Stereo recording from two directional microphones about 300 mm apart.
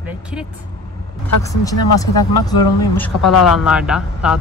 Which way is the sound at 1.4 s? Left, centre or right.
Centre.